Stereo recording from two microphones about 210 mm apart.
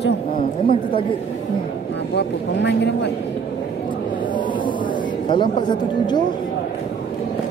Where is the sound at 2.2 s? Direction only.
55° left (ahead or behind).